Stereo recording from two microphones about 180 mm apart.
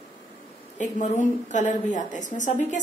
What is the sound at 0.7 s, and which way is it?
A woman's voice, 40° left (ahead or behind).